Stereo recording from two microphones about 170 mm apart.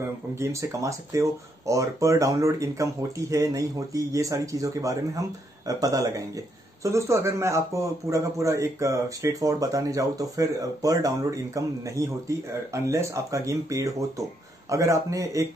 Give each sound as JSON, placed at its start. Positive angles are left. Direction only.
{"t": 0.4, "sound": "a man's voice", "side_deg": -15}